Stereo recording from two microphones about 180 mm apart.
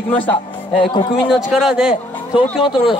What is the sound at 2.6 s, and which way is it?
Speech, 25° left (ahead or behind).